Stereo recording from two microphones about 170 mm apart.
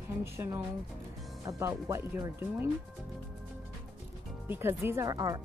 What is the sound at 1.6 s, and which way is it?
Speech, 15° right (ahead or behind).